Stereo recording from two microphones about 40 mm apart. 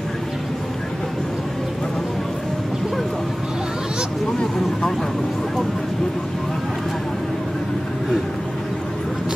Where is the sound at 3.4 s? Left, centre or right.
Centre.